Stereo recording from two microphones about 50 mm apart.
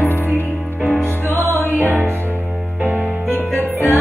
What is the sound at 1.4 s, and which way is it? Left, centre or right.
Music, right.